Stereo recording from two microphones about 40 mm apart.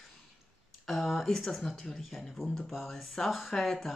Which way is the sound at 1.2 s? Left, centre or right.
Centre.